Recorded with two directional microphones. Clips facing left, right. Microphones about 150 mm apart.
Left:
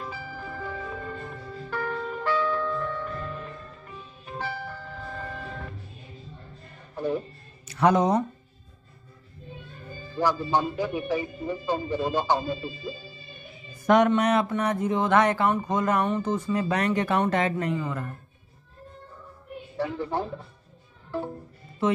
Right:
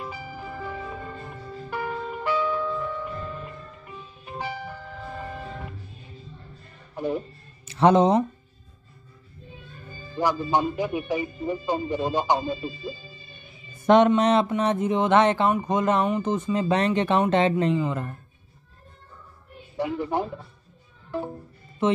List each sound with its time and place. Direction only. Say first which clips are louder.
0.0 s music: right 1 dB; 15° right (ahead or behind)
1.7 s music: even; 15° right (ahead or behind)
7.6 s speech: right 3 dB; 25° right (ahead or behind)
10.1 s speech: right 1 dB; 15° right (ahead or behind)
13.8 s speech: right 3 dB; 25° right (ahead or behind)
19.8 s speech: right 2 dB; 15° right (ahead or behind)
21.8 s speech: right 2 dB; 20° right (ahead or behind)